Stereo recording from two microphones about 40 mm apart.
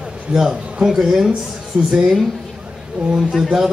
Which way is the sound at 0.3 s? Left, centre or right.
Centre.